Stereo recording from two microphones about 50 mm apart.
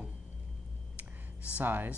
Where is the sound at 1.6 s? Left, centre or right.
Right.